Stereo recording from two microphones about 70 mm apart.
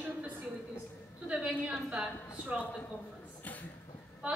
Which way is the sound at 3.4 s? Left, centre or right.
Left.